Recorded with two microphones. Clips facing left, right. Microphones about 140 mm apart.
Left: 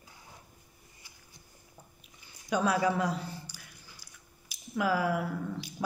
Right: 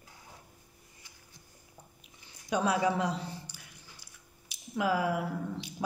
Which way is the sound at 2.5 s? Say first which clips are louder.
Left 1 dB; 30° right (ahead or behind).